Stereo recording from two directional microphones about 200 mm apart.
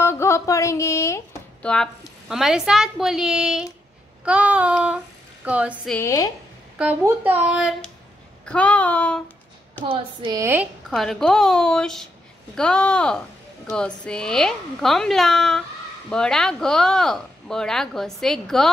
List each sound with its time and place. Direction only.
0.0 s speech: 15° left (ahead or behind); by 5.8 s 5° right (ahead or behind)
5.9 s a sound: 10° left (ahead or behind)
6.8 s speech: 10° right (ahead or behind)
8.5 s a sound: 5° left (ahead or behind)
9.9 s speech: 25° right (ahead or behind)
10.4 s a woman's voice: 10° right (ahead or behind)
10.9 s speech: centre (ahead or behind)